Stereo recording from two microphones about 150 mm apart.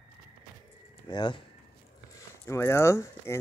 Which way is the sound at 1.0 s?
30° left (ahead or behind).